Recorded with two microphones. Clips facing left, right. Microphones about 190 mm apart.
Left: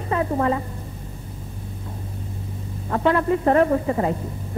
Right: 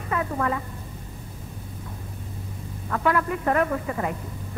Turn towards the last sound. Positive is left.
turn(degrees=30)  # may be behind; listen again after turning